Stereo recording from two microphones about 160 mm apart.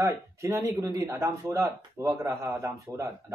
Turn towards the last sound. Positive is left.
turn(degrees=-15)  # may be behind; listen again after turning